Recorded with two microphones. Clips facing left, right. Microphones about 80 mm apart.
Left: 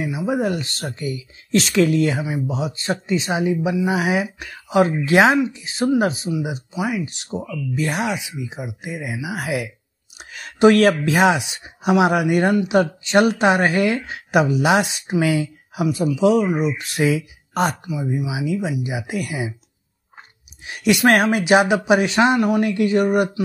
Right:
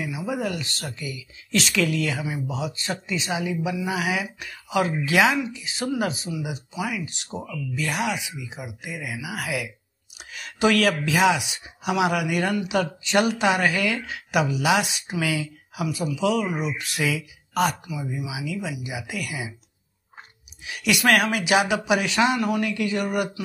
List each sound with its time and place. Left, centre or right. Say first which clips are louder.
0.3 s speech: left 6 dB; left
2.2 s speech: left 5 dB; left
15.8 s speech: left 7 dB; left
20.6 s speech: left 5 dB; left